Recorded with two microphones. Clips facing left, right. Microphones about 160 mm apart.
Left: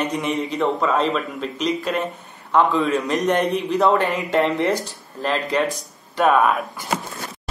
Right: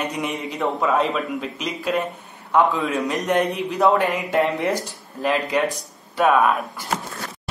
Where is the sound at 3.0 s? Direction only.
10° right (ahead or behind).